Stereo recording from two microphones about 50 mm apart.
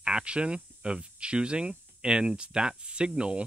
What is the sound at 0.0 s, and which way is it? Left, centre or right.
Speech, centre.